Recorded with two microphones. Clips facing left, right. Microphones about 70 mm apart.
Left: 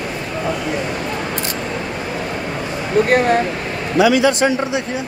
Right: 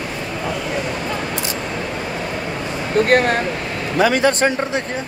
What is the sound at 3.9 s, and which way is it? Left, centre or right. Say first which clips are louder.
Speech: left 2 dB; right.